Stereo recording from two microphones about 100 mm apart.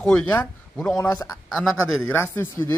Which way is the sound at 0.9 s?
40° left (ahead or behind).